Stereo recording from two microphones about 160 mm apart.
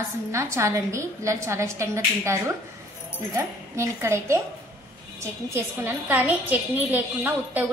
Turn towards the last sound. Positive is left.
turn(degrees=-10)  # may be behind; listen again after turning